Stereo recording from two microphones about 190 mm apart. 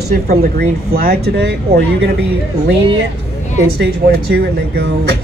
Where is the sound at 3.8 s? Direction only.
55° right (ahead or behind).